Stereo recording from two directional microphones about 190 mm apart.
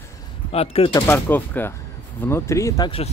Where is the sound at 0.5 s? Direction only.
30° left (ahead or behind).